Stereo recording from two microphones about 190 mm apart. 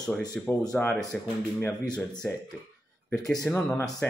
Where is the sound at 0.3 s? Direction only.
5° left (ahead or behind).